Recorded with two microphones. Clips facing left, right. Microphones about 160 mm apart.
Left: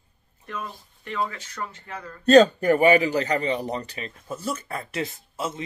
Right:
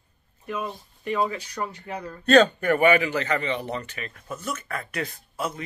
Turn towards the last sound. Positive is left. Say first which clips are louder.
# even
turn(degrees=25)  # may be behind; listen again after turning